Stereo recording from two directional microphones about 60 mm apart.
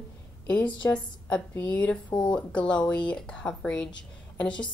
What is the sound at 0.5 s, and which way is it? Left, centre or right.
A woman's voice, left.